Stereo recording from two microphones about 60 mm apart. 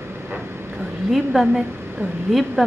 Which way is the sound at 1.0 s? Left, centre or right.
Centre.